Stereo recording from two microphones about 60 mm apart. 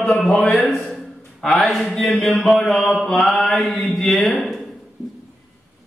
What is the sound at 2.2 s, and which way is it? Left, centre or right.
Mantra, centre.